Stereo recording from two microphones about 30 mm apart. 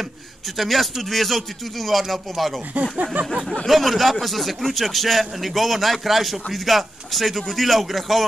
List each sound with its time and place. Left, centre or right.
0.6 s a man's voice: centre
2.8 s speech: right
3.6 s a man's voice: centre